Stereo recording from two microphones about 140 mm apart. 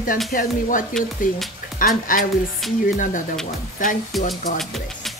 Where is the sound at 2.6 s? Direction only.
Centre (ahead or behind).